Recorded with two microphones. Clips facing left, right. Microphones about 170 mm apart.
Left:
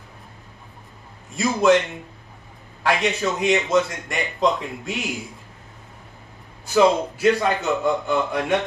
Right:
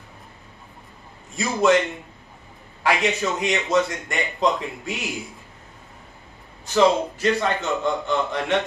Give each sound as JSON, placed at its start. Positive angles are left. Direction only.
{"t": 1.3, "sound": "a man's voice", "side_deg": 0}
{"t": 2.8, "sound": "a man's voice", "side_deg": 0}
{"t": 6.6, "sound": "a man's voice", "side_deg": 10}